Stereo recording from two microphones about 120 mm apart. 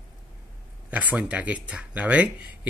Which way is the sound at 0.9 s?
10° right (ahead or behind).